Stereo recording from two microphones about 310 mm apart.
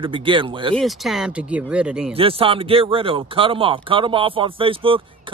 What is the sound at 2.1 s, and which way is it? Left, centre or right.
Speech, centre.